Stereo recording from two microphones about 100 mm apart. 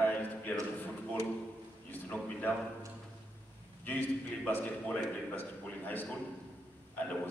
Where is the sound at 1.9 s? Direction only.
20° left (ahead or behind).